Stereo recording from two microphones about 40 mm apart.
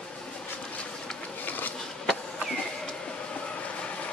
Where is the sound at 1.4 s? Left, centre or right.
Left.